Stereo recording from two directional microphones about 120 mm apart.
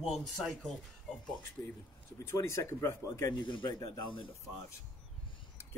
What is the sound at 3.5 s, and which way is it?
Speech, 45° left (ahead or behind).